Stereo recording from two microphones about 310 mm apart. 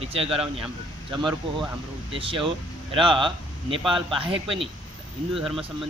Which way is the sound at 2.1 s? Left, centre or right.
Centre.